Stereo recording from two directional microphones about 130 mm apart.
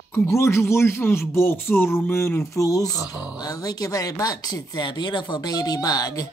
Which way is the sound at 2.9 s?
20° right (ahead or behind).